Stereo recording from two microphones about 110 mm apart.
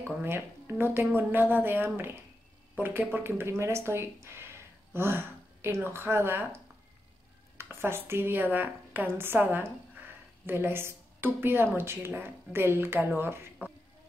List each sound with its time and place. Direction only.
0.0 s a woman's voice: 20° right (ahead or behind)